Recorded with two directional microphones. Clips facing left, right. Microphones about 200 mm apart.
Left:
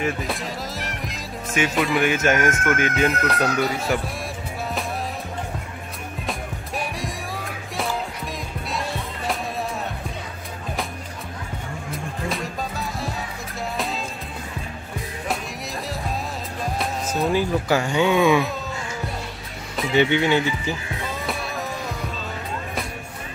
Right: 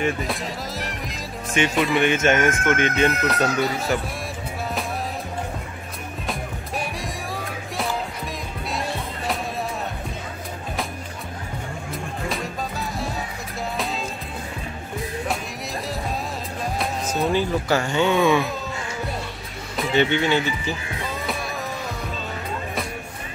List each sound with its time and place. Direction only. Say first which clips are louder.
0.0 s speech: right 1 dB; centre (ahead or behind)
6.8 s music: left 1 dB; centre (ahead or behind)
11.9 s music: left 1 dB; centre (ahead or behind)
16.6 s music: even; centre (ahead or behind)
20.0 s speech: left 2 dB; 15° left (ahead or behind)